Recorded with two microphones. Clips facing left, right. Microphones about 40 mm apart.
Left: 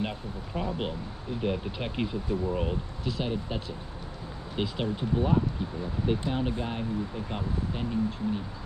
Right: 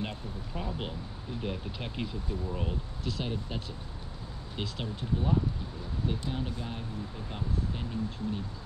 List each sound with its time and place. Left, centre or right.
0.6 s speech: centre